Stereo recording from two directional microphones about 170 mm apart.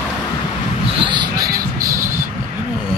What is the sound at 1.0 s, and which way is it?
Basketball bounce, 25° right (ahead or behind).